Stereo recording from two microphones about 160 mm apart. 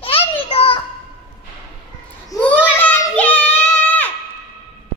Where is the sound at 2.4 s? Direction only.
10° left (ahead or behind).